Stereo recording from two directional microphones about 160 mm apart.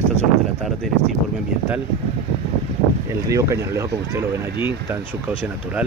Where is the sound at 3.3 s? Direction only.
20° right (ahead or behind).